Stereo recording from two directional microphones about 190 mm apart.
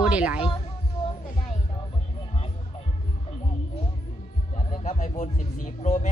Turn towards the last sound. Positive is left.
turn(degrees=40)  # may be behind; listen again after turning